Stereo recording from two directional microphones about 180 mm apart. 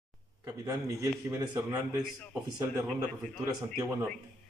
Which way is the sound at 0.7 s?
15° right (ahead or behind).